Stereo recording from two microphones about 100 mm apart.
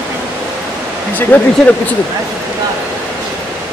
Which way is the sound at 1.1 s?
20° left (ahead or behind).